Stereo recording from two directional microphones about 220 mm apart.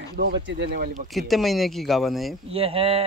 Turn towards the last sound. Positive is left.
turn(degrees=-25)  # may be behind; listen again after turning